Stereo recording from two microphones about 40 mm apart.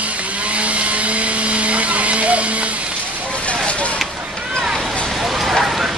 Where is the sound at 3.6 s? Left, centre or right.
Left.